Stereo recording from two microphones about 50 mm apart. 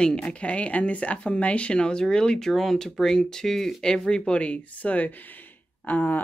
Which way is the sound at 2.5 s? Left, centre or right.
Centre.